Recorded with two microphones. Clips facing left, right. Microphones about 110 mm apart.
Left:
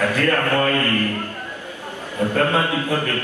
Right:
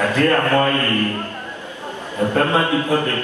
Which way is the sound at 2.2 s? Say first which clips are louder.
Right 2 dB; 25° right (ahead or behind).